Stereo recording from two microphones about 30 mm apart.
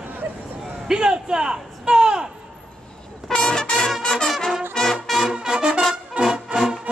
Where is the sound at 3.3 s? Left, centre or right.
Left.